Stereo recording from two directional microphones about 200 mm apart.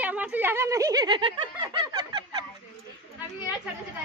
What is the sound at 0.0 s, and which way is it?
Speech, 10° right (ahead or behind).